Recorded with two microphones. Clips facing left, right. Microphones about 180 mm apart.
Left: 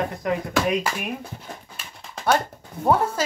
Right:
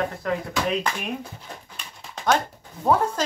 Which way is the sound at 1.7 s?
5° left (ahead or behind).